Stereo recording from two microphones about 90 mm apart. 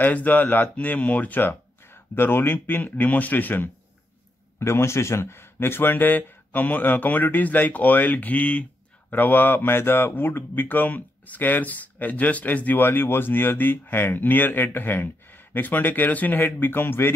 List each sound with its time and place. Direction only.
0.0 s a man's voice: 20° left (ahead or behind)